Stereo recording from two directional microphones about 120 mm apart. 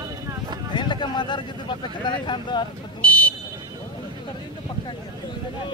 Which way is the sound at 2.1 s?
40° left (ahead or behind).